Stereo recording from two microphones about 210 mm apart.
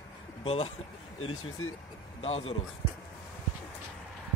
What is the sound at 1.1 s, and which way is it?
Speech, 80° left.